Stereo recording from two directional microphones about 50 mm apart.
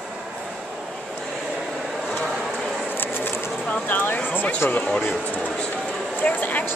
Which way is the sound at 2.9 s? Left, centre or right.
Left.